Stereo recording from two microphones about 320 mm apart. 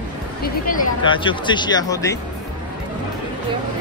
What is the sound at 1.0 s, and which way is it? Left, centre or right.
Speech, centre.